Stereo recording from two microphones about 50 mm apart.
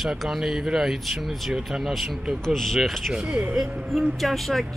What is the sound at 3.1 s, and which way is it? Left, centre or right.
Speech, centre.